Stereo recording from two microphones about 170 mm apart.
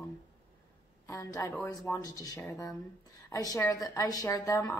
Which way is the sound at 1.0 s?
15° left (ahead or behind).